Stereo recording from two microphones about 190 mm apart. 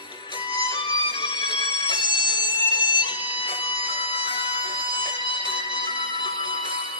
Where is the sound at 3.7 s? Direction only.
25° left (ahead or behind).